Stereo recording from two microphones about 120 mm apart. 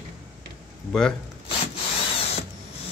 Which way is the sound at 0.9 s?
5° left (ahead or behind).